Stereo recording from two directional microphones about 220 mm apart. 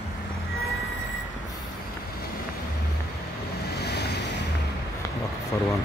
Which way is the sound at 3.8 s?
50° left (ahead or behind).